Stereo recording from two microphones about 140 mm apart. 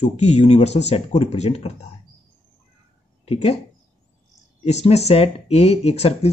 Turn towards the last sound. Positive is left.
turn(degrees=45)  # may be behind; listen again after turning